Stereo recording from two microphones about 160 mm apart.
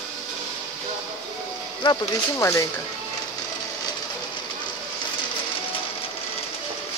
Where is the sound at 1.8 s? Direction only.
20° left (ahead or behind).